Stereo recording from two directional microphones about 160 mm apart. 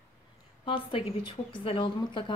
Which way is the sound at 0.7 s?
35° left (ahead or behind).